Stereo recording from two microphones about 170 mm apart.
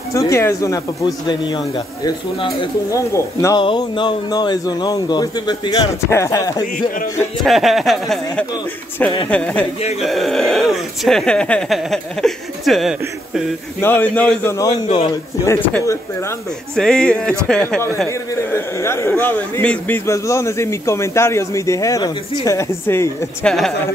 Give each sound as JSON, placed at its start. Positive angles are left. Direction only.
{"t": 0.1, "sound": "speech", "side_deg": 20}
{"t": 3.6, "sound": "a man's voice", "side_deg": 30}
{"t": 7.4, "sound": "a man's voice", "side_deg": 0}
{"t": 13.7, "sound": "a man's voice", "side_deg": 10}
{"t": 18.3, "sound": "a man's voice", "side_deg": 15}